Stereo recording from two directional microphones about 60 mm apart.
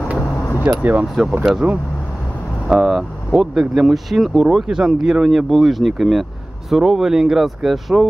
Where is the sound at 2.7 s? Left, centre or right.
Centre.